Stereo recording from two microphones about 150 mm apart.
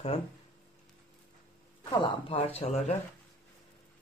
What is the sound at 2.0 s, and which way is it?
Speech, 40° left (ahead or behind).